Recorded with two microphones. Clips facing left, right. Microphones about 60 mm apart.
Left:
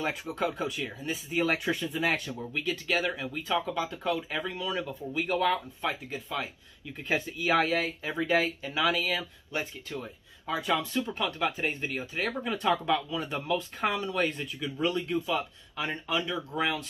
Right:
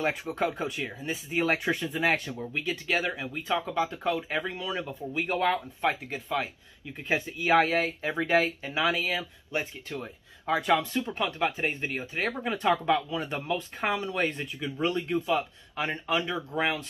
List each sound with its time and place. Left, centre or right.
0.0 s speech: right
2.5 s speech: centre; by 6.3 s right
7.1 s speech: right
11.1 s speech: right